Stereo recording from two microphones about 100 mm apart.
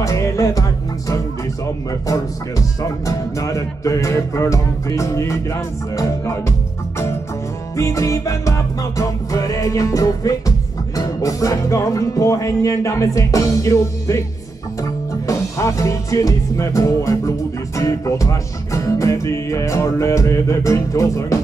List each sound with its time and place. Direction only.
0.0 s music: 35° left (ahead or behind)
2.8 s music: 35° left (ahead or behind)
7.7 s music: 30° left (ahead or behind)